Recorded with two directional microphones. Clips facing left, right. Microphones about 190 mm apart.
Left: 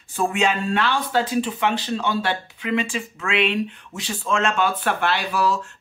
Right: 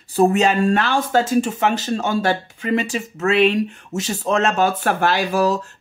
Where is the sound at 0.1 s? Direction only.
40° right (ahead or behind).